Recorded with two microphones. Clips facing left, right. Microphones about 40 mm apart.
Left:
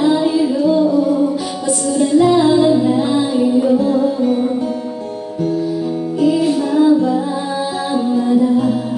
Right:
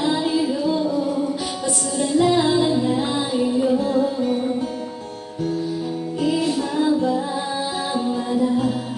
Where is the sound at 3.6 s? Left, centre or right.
Centre.